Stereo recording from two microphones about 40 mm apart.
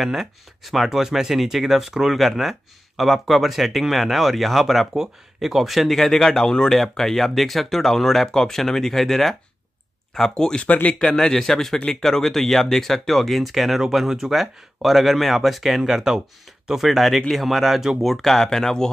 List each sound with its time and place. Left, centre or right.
0.0 s a man's voice: centre
10.7 s speech: left
11.0 s a man's voice: centre